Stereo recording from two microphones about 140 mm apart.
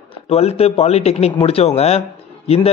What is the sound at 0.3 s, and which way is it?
A man's voice, 45° left (ahead or behind).